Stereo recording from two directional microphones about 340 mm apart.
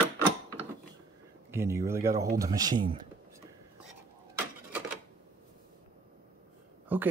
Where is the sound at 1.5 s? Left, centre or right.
Centre.